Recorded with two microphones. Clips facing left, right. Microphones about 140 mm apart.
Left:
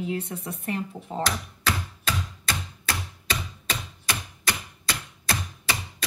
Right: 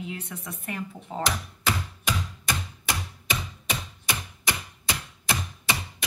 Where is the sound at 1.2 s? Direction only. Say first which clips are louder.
Right 3 dB; 15° right (ahead or behind).